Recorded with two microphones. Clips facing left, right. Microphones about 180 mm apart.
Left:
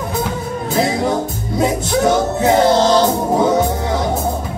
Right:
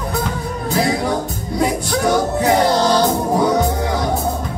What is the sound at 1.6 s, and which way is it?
Music, 20° left (ahead or behind).